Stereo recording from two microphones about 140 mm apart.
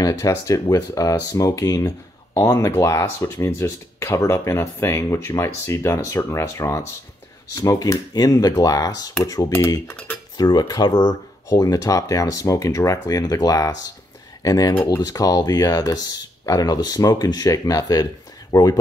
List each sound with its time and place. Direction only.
0.0 s speech: 25° left (ahead or behind)
10.3 s speech: 30° left (ahead or behind)